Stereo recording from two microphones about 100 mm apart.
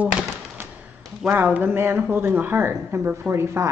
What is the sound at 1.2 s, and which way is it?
Speech, 15° right (ahead or behind).